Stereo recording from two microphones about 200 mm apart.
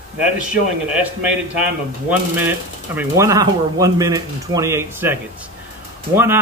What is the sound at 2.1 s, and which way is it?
Speech, 10° right (ahead or behind).